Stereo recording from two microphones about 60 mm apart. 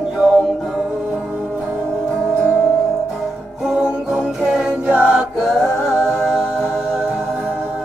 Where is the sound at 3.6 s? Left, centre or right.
Centre.